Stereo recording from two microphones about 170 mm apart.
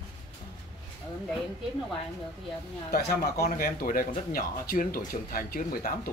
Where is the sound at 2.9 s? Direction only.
65° left (ahead or behind).